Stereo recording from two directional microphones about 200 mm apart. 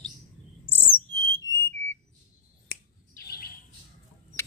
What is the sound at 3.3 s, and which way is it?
Bird, 50° left (ahead or behind).